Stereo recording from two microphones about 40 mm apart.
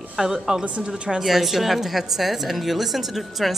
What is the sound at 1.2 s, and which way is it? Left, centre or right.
A woman's voice, centre.